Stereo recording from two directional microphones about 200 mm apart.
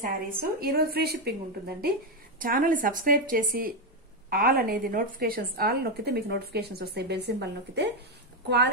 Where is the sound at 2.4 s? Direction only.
45° right (ahead or behind).